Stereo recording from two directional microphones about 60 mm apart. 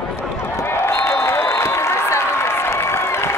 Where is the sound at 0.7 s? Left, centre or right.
Left.